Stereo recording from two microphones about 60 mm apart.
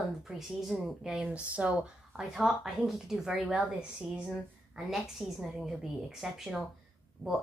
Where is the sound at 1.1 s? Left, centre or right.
Centre.